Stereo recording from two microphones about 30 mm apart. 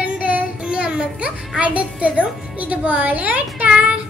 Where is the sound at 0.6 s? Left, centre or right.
Right.